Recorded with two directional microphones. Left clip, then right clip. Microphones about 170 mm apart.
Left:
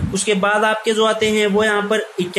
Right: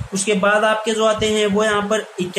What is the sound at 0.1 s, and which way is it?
A man's voice, 15° left (ahead or behind).